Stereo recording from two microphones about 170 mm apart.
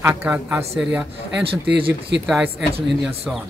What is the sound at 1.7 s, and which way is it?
Speech, 80° right.